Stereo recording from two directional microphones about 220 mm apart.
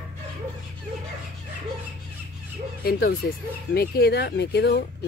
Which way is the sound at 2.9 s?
40° left (ahead or behind).